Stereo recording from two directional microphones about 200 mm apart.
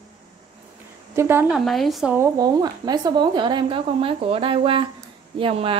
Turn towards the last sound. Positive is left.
turn(degrees=-25)  # may be behind; listen again after turning